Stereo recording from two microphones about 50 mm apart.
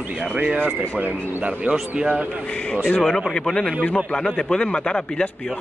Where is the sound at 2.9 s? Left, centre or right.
Centre.